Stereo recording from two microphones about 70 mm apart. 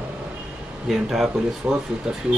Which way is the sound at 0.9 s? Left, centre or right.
Centre.